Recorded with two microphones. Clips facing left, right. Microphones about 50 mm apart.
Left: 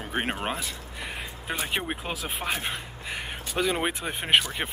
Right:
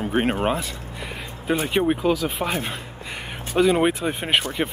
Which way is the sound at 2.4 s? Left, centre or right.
Centre.